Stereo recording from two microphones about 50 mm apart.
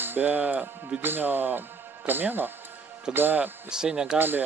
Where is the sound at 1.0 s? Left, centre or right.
Right.